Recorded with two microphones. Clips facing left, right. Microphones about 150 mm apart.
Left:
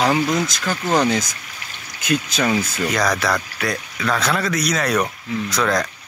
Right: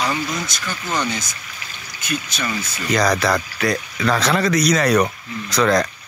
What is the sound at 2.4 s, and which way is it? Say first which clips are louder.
Speech: left 6 dB; 60° left (ahead or behind).